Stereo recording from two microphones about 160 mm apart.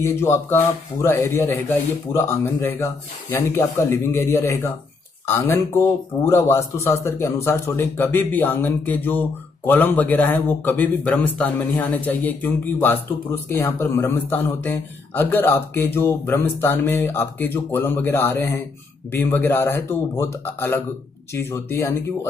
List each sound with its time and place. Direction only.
0.0 s a man's voice: 15° left (ahead or behind)